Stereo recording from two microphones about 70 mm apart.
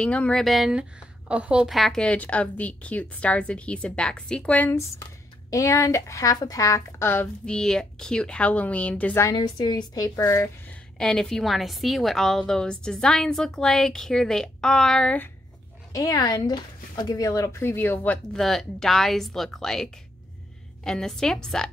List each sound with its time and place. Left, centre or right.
0.0 s a woman's voice: centre
0.4 s speech: centre
1.3 s a woman's voice: centre
1.7 s speech: centre
2.1 s a woman's voice: centre
5.5 s speech: left
6.3 s speech: left
7.4 s a woman's voice: centre
9.3 s a woman's voice: left
11.0 s a woman's voice: centre
15.9 s speech: left
18.3 s a woman's voice: centre